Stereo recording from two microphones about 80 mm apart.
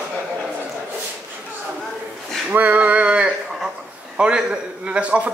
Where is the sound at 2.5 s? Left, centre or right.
Centre.